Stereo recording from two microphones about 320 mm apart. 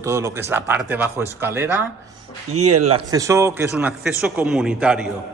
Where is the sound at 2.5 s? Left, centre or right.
Right.